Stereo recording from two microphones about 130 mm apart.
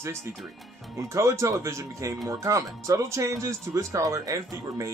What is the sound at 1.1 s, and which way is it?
Speech, 25° right (ahead or behind).